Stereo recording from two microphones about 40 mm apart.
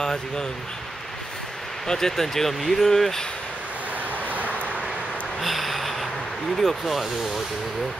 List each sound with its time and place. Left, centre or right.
0.0 s speech: centre
1.9 s speech: centre
4.3 s vehicle: right
5.4 s a sound: centre
6.5 s speech: centre